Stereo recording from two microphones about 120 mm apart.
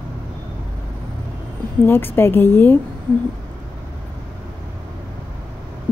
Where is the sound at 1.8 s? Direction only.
20° left (ahead or behind).